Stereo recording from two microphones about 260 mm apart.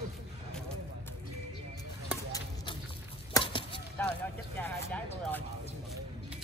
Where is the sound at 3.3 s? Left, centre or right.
Centre.